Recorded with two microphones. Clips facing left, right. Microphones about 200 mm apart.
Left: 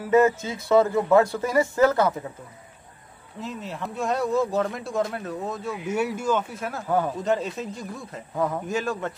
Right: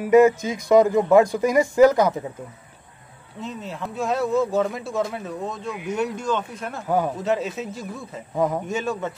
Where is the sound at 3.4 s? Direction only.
Centre (ahead or behind).